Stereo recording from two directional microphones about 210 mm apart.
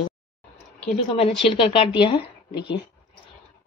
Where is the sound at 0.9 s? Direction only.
30° left (ahead or behind).